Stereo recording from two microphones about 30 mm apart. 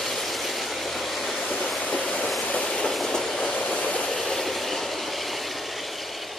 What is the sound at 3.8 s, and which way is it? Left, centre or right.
Train, left.